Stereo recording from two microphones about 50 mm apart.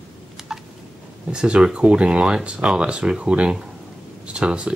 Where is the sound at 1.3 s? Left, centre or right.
Centre.